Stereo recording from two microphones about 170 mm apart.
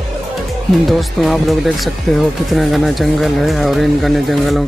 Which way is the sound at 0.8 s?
Centre (ahead or behind).